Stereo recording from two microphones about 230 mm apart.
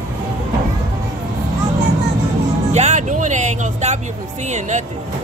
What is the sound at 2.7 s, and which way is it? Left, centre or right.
Speech, right.